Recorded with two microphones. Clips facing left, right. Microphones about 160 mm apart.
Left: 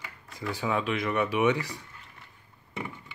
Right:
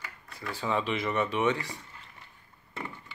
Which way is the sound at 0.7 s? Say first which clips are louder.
Even; centre (ahead or behind).